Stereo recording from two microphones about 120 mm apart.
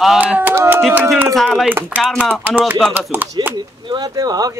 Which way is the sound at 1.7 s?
15° right (ahead or behind).